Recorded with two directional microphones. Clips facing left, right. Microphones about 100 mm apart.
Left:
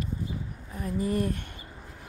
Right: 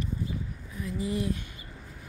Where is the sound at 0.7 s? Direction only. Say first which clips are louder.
Left 3 dB; 45° left (ahead or behind).